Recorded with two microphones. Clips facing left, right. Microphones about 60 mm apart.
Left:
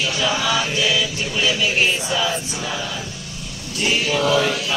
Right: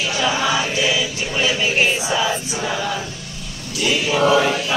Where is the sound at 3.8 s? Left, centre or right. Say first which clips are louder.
Right 1 dB; left.